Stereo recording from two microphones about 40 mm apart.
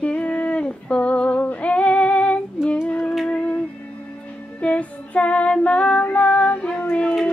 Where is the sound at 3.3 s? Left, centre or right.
Left.